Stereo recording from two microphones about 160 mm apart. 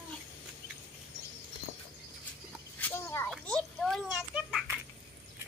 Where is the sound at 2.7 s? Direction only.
10° left (ahead or behind).